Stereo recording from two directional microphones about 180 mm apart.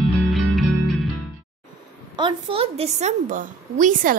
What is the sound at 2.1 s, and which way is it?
A woman's voice, 30° right (ahead or behind).